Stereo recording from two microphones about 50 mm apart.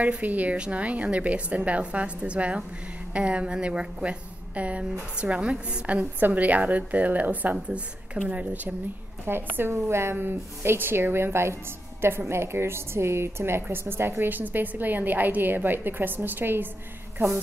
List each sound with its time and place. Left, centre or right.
0.0 s a woman's voice: right
6.1 s a woman's voice: right
9.2 s a woman's voice: right